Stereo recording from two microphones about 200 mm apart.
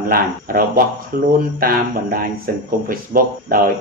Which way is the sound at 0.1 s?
45° right (ahead or behind).